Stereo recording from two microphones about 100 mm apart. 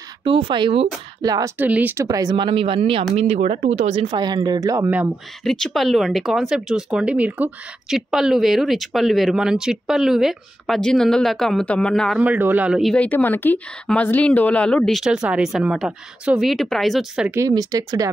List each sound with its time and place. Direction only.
0.2 s speech: 60° right (ahead or behind)
1.2 s speech: 40° right (ahead or behind)
1.6 s a man's voice: 15° right (ahead or behind)
2.0 s speech: 35° right (ahead or behind); by 3.1 s 65° right (ahead or behind)
3.2 s speech: 90° right
4.2 s speech: 45° right (ahead or behind)
5.4 s speech: 5° left (ahead or behind)
12.2 s a man's voice: 15° right (ahead or behind)
12.9 s speech: 15° left (ahead or behind)
15.0 s speech: 5° right (ahead or behind)
17.5 s speech: 40° right (ahead or behind)